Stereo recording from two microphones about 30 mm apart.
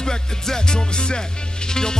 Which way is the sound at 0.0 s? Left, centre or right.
Left.